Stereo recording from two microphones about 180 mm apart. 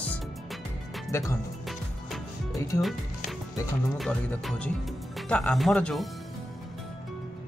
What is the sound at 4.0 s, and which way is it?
Speech, 5° left (ahead or behind).